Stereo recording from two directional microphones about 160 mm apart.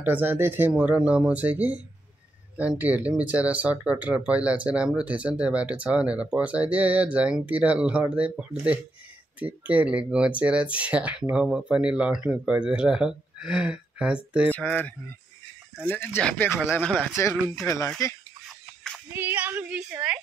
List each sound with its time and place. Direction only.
0.0 s speech: 10° right (ahead or behind)
14.5 s speech: 10° left (ahead or behind)
18.0 s speech: 20° left (ahead or behind)
19.1 s speech: 10° right (ahead or behind)